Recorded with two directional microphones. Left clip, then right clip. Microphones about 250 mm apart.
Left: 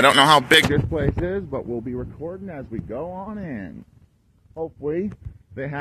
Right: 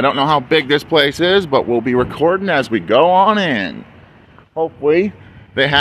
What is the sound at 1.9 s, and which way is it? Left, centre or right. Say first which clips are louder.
Speech: right 18 dB; right.